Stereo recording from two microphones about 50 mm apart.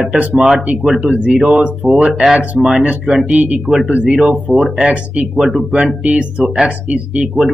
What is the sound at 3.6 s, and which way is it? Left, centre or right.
Speech, centre.